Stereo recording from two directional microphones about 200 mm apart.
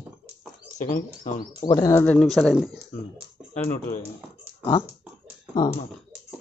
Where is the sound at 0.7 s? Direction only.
40° left (ahead or behind).